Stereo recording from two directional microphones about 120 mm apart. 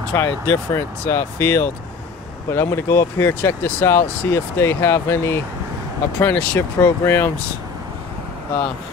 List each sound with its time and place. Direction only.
0.1 s speech: 20° left (ahead or behind)